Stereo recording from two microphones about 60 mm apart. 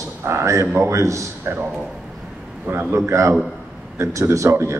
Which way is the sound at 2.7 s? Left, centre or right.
Right.